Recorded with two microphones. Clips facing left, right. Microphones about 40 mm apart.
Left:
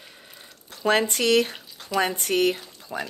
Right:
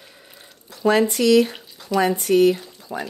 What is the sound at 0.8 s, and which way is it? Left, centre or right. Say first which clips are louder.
Speech: right 4 dB; left.